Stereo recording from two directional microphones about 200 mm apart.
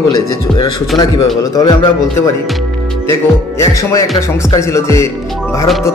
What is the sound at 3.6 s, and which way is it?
Speech, 15° left (ahead or behind).